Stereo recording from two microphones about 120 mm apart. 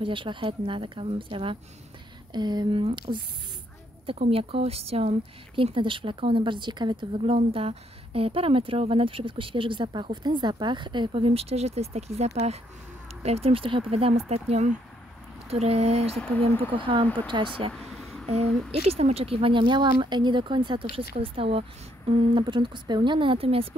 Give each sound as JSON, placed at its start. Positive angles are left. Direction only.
{"t": 0.0, "sound": "speech", "side_deg": -45}
{"t": 3.1, "sound": "speech", "side_deg": -65}
{"t": 4.0, "sound": "speech", "side_deg": -50}
{"t": 5.6, "sound": "speech", "side_deg": -45}
{"t": 7.5, "sound": "speech", "side_deg": -55}
{"t": 16.2, "sound": "speech", "side_deg": 15}
{"t": 16.7, "sound": "speech", "side_deg": -45}
{"t": 17.7, "sound": "a sound", "side_deg": 0}
{"t": 18.7, "sound": "speech", "side_deg": -60}